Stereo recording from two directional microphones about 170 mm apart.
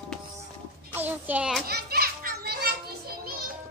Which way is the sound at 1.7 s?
70° right (ahead or behind).